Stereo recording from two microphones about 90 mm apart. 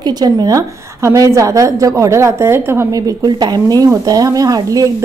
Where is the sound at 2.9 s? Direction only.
45° right (ahead or behind).